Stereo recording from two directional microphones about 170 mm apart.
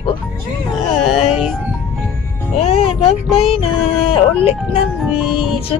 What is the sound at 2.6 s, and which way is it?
Speech, 35° left (ahead or behind).